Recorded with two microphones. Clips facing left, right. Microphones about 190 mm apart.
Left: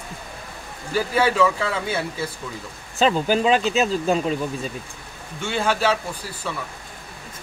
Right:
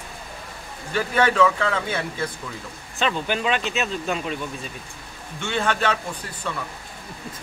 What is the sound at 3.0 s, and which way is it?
Speech, 35° left (ahead or behind).